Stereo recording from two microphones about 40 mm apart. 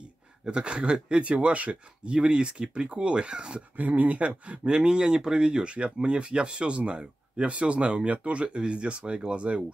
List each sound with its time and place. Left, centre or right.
0.5 s speech: right
2.1 s speech: right
3.7 s speech: right
4.5 s speech: right